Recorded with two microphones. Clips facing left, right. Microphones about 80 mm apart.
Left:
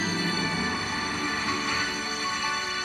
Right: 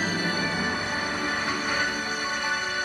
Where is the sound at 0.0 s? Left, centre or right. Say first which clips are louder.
Right 1 dB; right.